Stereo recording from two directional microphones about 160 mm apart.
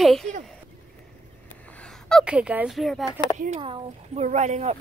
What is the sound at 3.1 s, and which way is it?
Speech, 30° left (ahead or behind).